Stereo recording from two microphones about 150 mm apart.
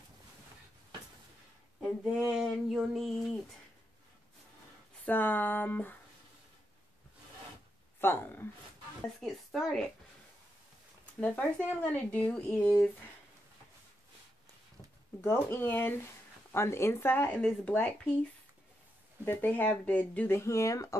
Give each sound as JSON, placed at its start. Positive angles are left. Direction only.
{"t": 1.8, "sound": "a sound", "side_deg": 0}
{"t": 5.0, "sound": "speech", "side_deg": 10}
{"t": 8.0, "sound": "speech", "side_deg": 15}
{"t": 9.2, "sound": "a sound", "side_deg": 0}
{"t": 11.1, "sound": "speech", "side_deg": 10}
{"t": 15.2, "sound": "speech", "side_deg": 15}
{"t": 19.2, "sound": "speech", "side_deg": 10}